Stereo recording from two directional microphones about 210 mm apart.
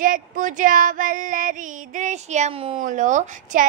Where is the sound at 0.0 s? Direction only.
40° right (ahead or behind).